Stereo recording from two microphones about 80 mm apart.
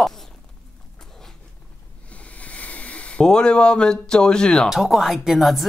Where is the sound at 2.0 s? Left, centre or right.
Centre.